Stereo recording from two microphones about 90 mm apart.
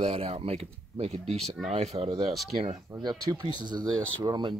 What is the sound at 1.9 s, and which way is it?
Speech, 65° right (ahead or behind).